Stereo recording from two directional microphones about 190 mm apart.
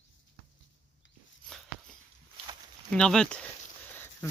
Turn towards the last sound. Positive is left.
turn(degrees=5)  # may be behind; listen again after turning